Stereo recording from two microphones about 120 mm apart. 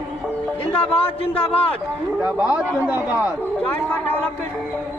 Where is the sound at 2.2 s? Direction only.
10° right (ahead or behind).